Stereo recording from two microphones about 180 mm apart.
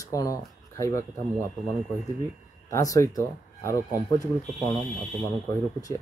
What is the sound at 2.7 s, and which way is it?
Speech, 20° left (ahead or behind).